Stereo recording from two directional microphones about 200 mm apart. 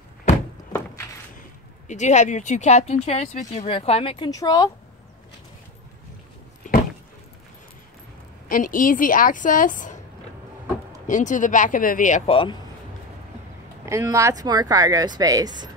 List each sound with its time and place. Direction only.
1.9 s speech: 35° left (ahead or behind); by 4.6 s 20° left (ahead or behind)
8.5 s a woman's voice: 45° left (ahead or behind)
11.1 s speech: 40° left (ahead or behind)
12.3 s speech: 25° left (ahead or behind)
13.8 s speech: 15° right (ahead or behind)